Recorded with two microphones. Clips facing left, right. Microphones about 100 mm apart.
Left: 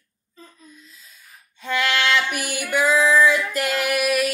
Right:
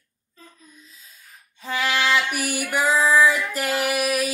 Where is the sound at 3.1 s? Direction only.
5° right (ahead or behind).